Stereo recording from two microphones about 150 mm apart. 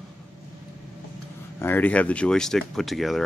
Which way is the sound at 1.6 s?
10° left (ahead or behind).